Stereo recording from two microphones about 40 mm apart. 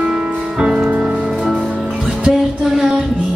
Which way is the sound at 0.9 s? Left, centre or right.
Right.